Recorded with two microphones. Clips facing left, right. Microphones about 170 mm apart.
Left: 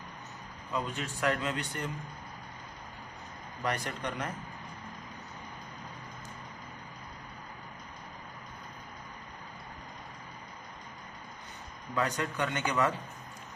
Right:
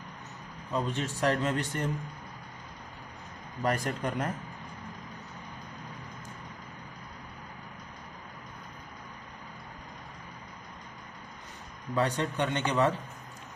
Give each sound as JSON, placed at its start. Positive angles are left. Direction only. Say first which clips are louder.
{"t": 0.7, "sound": "a man's voice", "louder": "right 4 dB", "side_deg": -35}
{"t": 3.6, "sound": "speech", "louder": "right 4 dB", "side_deg": -45}
{"t": 11.9, "sound": "speech", "louder": "right 3 dB", "side_deg": -30}